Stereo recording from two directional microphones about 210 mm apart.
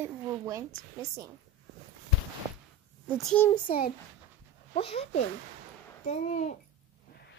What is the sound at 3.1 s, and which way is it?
Speech, 5° left (ahead or behind).